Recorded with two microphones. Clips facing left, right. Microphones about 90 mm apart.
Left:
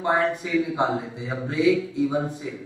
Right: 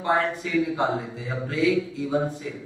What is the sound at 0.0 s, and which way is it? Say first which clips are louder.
Speech: left 1 dB; 20° left (ahead or behind).